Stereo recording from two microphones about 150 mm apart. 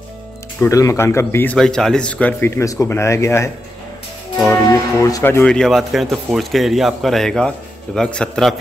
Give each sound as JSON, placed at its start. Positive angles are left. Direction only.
{"t": 0.6, "sound": "speech", "side_deg": 20}